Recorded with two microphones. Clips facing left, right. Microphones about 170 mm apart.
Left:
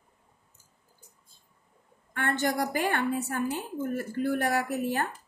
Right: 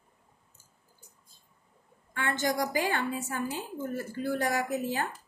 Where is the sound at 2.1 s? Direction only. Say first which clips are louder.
Left 2 dB; 55° left (ahead or behind).